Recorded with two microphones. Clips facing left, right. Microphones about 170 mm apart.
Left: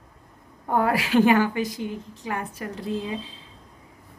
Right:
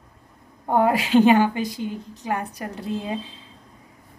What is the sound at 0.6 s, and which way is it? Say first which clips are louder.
A woman's voice: right 3 dB; 20° right (ahead or behind).